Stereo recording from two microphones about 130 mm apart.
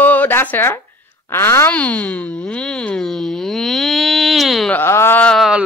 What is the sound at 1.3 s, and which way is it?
Speech, 20° left (ahead or behind).